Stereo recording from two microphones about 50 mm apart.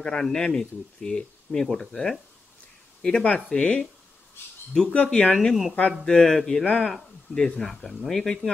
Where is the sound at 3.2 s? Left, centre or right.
Centre.